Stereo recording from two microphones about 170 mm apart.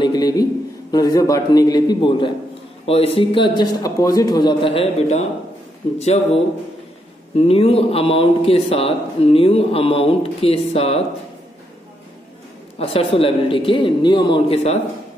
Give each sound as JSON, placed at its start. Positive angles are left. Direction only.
{"t": 0.0, "sound": "a man's voice", "side_deg": 25}
{"t": 12.7, "sound": "a man's voice", "side_deg": 35}